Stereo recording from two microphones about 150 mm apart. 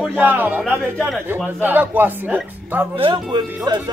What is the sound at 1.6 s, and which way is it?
Speech, 10° right (ahead or behind).